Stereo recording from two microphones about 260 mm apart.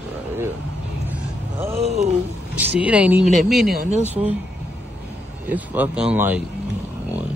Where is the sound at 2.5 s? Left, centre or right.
Centre.